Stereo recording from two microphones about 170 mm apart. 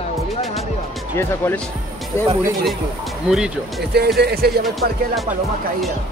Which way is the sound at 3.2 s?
5° right (ahead or behind).